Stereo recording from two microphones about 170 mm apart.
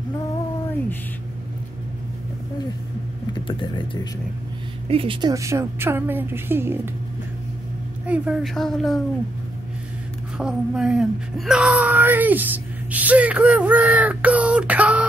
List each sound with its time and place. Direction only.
3.3 s speech: 30° left (ahead or behind)
4.8 s speech: 30° right (ahead or behind)
5.3 s speech: 15° right (ahead or behind)
8.1 s speech: 5° right (ahead or behind)
10.3 s speech: 5° right (ahead or behind)